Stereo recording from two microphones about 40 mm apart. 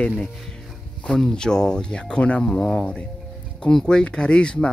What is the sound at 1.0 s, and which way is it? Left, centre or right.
Speech, centre.